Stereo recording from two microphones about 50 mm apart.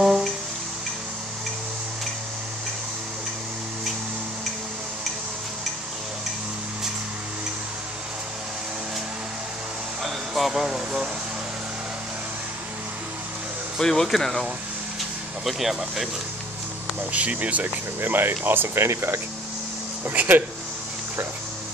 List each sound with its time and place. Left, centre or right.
10.0 s speech: centre
13.7 s speech: centre
15.0 s speech: centre
17.1 s speech: right
18.0 s speech: right
18.9 s speech: right
20.1 s speech: right